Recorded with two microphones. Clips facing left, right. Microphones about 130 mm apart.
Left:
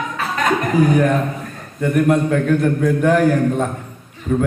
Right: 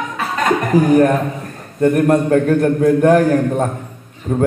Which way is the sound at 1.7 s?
40° right (ahead or behind).